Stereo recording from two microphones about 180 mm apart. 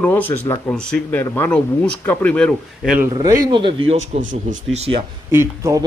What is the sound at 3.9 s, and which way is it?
Speech, 40° right (ahead or behind).